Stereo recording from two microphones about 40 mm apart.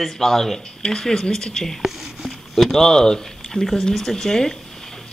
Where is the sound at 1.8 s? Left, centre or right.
Centre.